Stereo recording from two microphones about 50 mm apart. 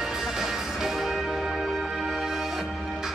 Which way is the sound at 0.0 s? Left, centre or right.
Centre.